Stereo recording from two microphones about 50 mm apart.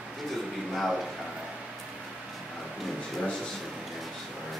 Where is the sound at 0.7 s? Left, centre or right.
Centre.